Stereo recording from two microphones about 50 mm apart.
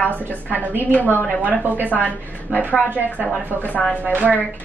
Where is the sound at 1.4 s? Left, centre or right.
Right.